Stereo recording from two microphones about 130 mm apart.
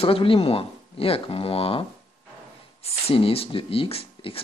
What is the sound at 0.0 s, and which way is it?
Speech, 45° left (ahead or behind).